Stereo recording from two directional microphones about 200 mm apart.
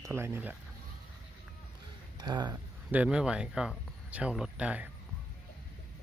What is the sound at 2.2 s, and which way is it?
Speech, 20° right (ahead or behind).